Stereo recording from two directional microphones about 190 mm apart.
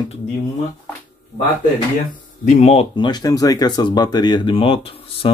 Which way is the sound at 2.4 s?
35° left (ahead or behind).